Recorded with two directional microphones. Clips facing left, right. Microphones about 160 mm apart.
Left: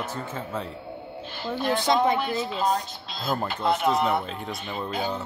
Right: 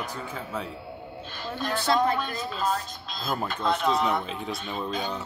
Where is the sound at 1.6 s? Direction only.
20° left (ahead or behind).